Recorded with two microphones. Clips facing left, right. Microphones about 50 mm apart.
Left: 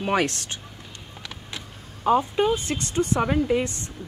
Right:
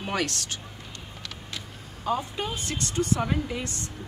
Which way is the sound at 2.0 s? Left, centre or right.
Left.